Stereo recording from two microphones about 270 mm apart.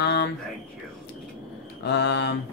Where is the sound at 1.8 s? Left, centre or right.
Left.